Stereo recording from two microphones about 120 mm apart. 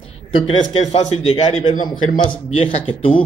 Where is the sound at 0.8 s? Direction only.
65° left (ahead or behind).